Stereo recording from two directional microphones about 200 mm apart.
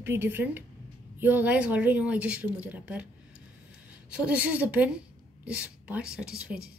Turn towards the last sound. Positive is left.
turn(degrees=-5)  # may be behind; listen again after turning